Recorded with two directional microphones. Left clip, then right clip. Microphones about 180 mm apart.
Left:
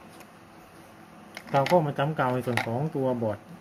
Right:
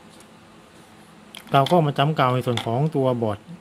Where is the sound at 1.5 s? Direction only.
60° right (ahead or behind).